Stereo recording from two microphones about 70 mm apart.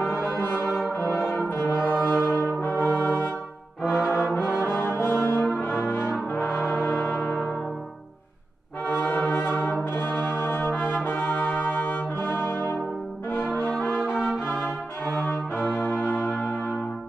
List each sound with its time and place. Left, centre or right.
0.4 s brass instrument: left
3.9 s brass instrument: left
8.8 s brass instrument: left
12.4 s brass instrument: left
13.7 s brass instrument: centre
14.1 s music: centre
14.4 s brass instrument: left
15.9 s church bell: left